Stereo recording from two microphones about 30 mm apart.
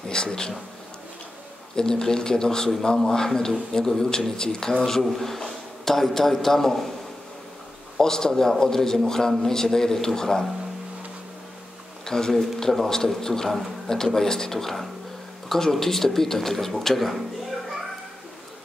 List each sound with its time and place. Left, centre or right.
0.1 s speech: left
1.8 s a man's voice: left
5.1 s a man's voice: centre
8.0 s a man's voice: centre
12.0 s a man's voice: centre